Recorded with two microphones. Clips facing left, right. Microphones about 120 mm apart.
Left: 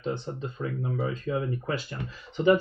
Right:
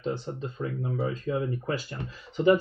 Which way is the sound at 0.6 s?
35° right (ahead or behind).